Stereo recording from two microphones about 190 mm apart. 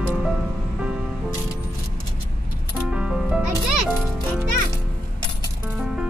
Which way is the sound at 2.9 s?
5° right (ahead or behind).